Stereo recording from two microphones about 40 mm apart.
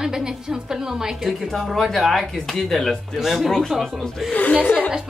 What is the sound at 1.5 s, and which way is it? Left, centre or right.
Speech, centre.